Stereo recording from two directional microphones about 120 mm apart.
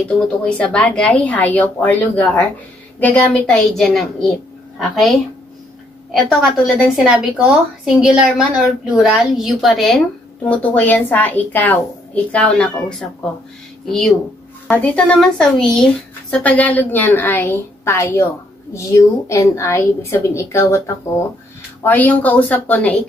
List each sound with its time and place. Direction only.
0.6 s a woman's voice: 10° left (ahead or behind)
3.4 s a woman's voice: 5° left (ahead or behind)
6.1 s a woman's voice: centre (ahead or behind)
10.4 s a woman's voice: 10° left (ahead or behind)
14.7 s speech: 10° left (ahead or behind)